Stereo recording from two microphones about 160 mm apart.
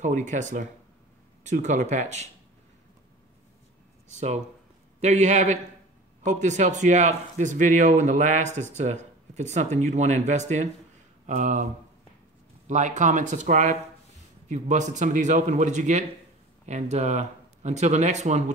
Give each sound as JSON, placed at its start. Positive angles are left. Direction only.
{"t": 0.0, "sound": "speech", "side_deg": -50}
{"t": 4.1, "sound": "speech", "side_deg": -45}
{"t": 12.6, "sound": "speech", "side_deg": -50}